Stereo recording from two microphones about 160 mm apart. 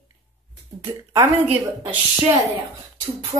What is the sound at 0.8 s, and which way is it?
Speech, 15° right (ahead or behind).